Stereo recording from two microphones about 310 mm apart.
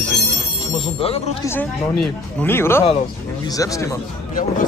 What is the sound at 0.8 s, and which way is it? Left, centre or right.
Speech, centre.